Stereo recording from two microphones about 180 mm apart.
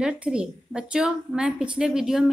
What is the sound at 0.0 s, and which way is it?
A woman's voice, 5° right (ahead or behind).